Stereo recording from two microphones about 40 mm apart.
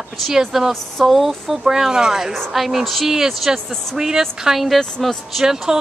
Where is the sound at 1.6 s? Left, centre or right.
Centre.